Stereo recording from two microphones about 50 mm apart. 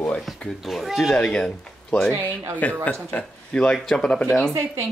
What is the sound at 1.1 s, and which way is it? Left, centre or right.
Speech, centre.